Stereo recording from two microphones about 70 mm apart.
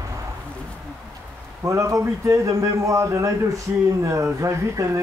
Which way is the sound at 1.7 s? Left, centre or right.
Right.